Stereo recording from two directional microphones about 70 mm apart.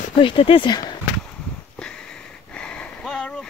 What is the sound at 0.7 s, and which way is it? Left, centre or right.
Speech, left.